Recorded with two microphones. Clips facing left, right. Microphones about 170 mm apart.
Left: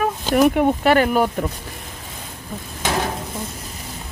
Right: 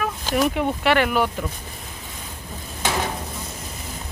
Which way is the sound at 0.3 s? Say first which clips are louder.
Left 6 dB; 55° left (ahead or behind).